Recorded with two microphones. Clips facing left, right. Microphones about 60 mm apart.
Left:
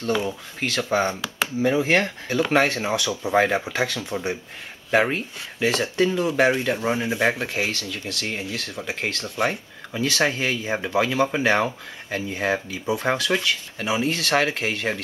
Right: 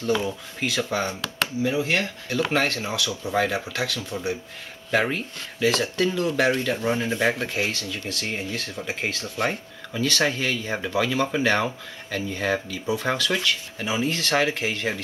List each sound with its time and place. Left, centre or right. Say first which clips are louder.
0.0 s speech: even; centre
1.6 s speech: left 5 dB; left
2.5 s speech: left 7 dB; centre
13.3 s speech: left 2 dB; centre